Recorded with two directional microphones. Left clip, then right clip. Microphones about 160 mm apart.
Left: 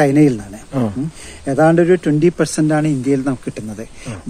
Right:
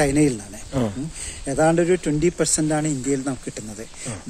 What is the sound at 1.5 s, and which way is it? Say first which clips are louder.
Speech: left 6 dB; 40° left (ahead or behind).